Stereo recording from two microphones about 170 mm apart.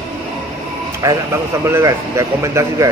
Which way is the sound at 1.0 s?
15° right (ahead or behind).